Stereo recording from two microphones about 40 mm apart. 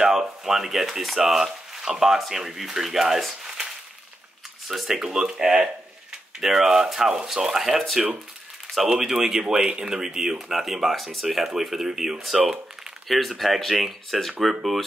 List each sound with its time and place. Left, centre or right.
0.0 s speech: centre
4.6 s speech: centre
8.8 s speech: centre
13.4 s speech: centre